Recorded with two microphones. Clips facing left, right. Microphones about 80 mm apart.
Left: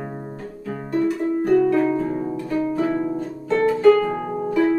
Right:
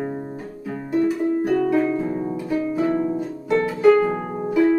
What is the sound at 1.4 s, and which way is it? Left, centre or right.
Music, centre.